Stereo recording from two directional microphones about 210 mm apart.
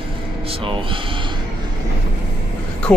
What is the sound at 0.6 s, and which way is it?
Speech, 25° right (ahead or behind).